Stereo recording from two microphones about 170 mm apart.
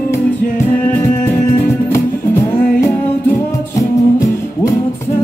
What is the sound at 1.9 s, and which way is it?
Music, 15° left (ahead or behind).